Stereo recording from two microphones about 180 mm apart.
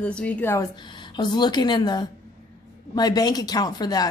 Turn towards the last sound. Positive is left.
turn(degrees=20)  # may be behind; listen again after turning